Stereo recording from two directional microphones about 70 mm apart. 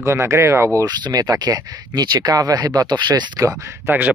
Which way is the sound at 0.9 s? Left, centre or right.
Right.